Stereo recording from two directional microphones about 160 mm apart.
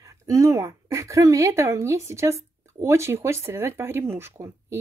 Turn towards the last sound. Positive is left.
turn(degrees=-15)  # may be behind; listen again after turning